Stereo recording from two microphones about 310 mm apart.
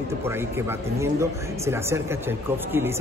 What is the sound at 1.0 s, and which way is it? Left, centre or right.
Speech, centre.